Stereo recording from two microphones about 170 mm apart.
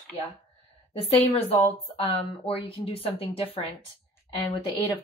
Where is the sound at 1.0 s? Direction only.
35° left (ahead or behind).